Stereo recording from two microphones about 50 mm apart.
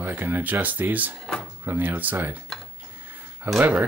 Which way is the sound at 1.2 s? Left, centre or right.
Centre.